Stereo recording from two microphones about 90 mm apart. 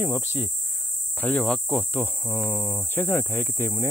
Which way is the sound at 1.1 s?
15° left (ahead or behind).